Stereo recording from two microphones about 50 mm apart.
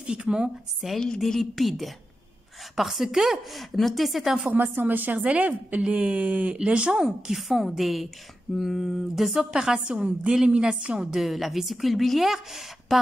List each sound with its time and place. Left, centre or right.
0.0 s a woman's voice: centre
0.8 s a woman's voice: centre
4.7 s speech: right
5.2 s speech: right
7.2 s a woman's voice: centre
11.0 s a woman's voice: centre